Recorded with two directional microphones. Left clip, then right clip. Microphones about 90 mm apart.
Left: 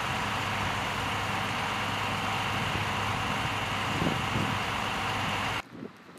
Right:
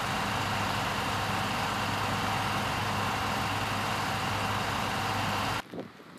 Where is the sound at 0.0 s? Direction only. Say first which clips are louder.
Even; 5° right (ahead or behind).